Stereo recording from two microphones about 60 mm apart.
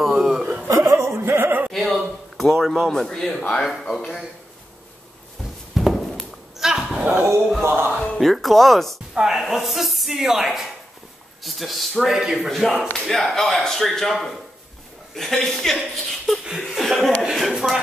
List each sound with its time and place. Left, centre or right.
0.0 s chuckle: centre
0.7 s music: right
1.7 s a sound: centre
2.9 s a man's voice: centre
5.8 s walk: centre
6.6 s dog: centre
7.6 s music: right
8.2 s speech: centre
9.1 s speech: centre
15.8 s speech: centre
16.8 s speech: centre